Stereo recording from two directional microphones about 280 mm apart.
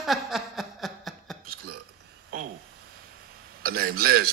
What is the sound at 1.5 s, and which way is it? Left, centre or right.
Burping, right.